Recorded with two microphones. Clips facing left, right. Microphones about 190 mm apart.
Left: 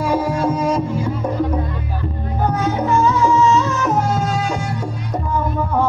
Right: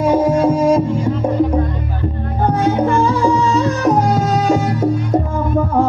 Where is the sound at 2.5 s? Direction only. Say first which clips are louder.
Right 4 dB; 30° right (ahead or behind).